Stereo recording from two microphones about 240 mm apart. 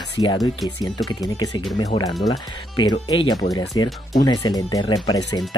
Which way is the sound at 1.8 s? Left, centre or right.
Centre.